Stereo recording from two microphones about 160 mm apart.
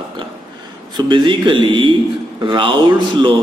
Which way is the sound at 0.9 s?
30° right (ahead or behind).